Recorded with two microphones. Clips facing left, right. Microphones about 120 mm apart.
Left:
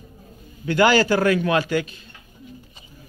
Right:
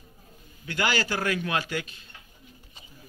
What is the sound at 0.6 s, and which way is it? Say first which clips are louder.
Speech: left 11 dB; 40° left (ahead or behind).